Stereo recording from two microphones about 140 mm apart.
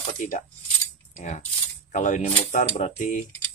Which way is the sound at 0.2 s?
65° left (ahead or behind).